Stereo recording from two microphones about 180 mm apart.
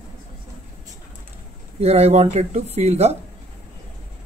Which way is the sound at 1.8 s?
35° right (ahead or behind).